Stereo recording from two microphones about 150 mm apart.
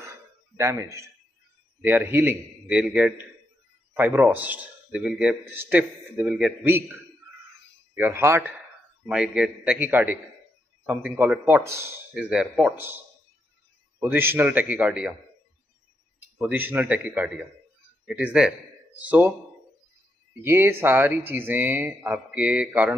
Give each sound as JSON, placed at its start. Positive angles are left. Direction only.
{"t": 0.0, "sound": "a sound", "side_deg": -20}
{"t": 1.8, "sound": "a man's voice", "side_deg": -10}
{"t": 7.9, "sound": "a man's voice", "side_deg": -15}
{"t": 11.1, "sound": "a man's voice", "side_deg": -10}
{"t": 16.3, "sound": "a man's voice", "side_deg": -10}
{"t": 20.4, "sound": "a man's voice", "side_deg": -15}